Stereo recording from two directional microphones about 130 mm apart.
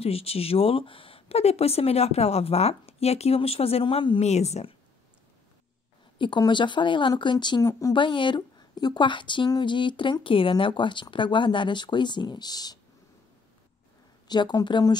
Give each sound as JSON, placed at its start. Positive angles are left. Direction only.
{"t": 0.0, "sound": "speech", "side_deg": 50}
{"t": 6.1, "sound": "a woman's voice", "side_deg": 40}
{"t": 14.2, "sound": "a woman's voice", "side_deg": 35}